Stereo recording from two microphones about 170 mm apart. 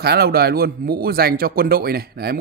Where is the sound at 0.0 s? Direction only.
65° right (ahead or behind).